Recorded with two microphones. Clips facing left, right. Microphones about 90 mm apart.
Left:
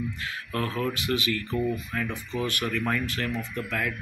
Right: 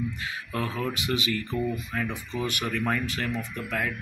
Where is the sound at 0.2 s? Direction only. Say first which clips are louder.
Left 1 dB; 20° right (ahead or behind).